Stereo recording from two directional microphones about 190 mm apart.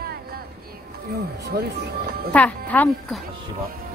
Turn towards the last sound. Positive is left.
turn(degrees=10)  # may be behind; listen again after turning